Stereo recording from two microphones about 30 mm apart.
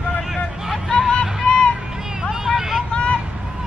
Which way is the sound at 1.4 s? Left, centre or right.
Left.